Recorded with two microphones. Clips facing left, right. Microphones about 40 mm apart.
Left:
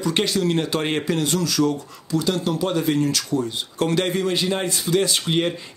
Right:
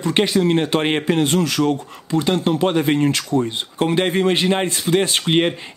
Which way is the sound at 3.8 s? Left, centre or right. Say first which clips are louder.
Right 3 dB; right.